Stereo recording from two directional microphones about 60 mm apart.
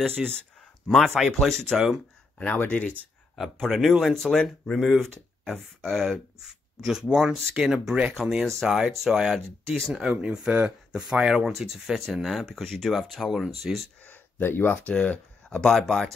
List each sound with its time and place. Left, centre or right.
0.0 s speech: centre
2.3 s speech: left
3.7 s speech: centre
6.4 s speech: centre
8.5 s speech: centre
10.1 s speech: centre
14.1 s speech: left; by 15.7 s centre
15.7 s speech: centre